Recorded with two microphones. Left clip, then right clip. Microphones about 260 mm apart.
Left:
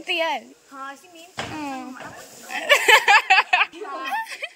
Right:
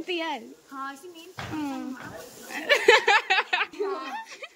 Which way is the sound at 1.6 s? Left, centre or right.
Centre.